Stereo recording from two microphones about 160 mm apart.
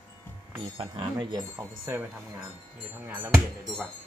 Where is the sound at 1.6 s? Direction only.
15° right (ahead or behind).